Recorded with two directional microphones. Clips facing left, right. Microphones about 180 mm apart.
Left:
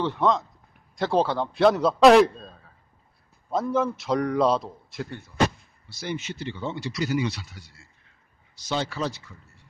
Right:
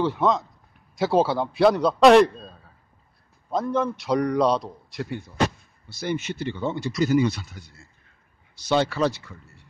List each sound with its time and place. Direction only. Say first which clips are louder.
0.0 s a man's voice: right 1 dB; centre (ahead or behind)
5.9 s speech: right 4 dB; 55° right (ahead or behind)
8.5 s speech: right 6 dB; 65° right (ahead or behind)